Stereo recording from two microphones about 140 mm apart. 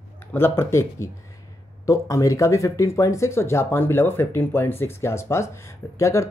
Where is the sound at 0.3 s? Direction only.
15° left (ahead or behind).